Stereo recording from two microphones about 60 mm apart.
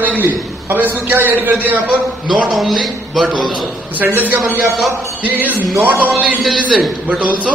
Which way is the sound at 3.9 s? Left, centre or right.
Right.